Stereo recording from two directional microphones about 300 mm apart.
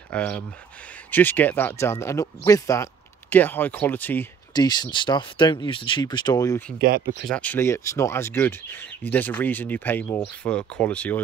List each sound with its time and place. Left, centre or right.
0.1 s speech: centre
6.8 s speech: right
7.2 s speech: centre